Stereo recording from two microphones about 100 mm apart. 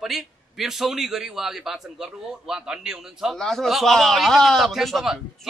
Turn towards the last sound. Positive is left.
turn(degrees=0)  # may be behind; listen again after turning